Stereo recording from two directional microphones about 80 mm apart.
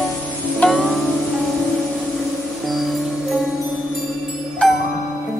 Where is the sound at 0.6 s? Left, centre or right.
Centre.